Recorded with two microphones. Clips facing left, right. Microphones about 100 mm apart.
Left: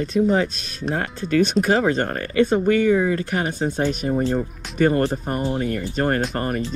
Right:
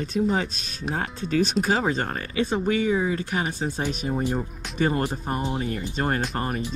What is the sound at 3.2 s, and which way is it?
Speech, centre (ahead or behind).